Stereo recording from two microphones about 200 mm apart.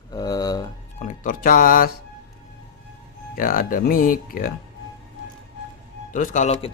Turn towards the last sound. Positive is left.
turn(degrees=35)  # may be behind; listen again after turning